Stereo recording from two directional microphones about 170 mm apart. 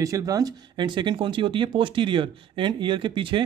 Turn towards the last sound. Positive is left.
turn(degrees=-30)  # may be behind; listen again after turning